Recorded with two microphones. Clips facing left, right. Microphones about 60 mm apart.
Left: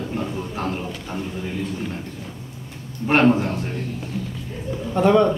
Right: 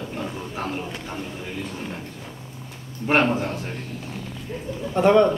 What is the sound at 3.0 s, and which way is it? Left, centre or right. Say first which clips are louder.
Speech: left 3 dB; centre.